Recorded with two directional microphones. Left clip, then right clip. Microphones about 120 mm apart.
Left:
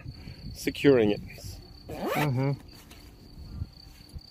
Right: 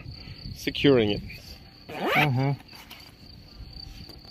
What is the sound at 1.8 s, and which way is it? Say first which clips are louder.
Zipper: right 6 dB; 25° right (ahead or behind).